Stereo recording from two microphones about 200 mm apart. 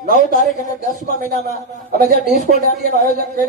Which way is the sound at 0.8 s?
35° left (ahead or behind).